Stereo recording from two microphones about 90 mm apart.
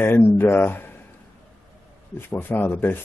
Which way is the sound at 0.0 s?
25° left (ahead or behind).